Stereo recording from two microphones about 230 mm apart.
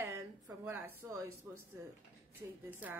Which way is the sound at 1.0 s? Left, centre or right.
Centre.